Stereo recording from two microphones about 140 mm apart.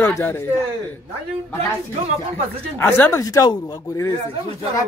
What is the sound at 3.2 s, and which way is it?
Speech, 25° left (ahead or behind).